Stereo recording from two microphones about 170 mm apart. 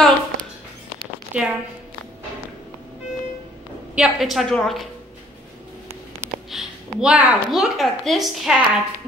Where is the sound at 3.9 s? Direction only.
5° right (ahead or behind).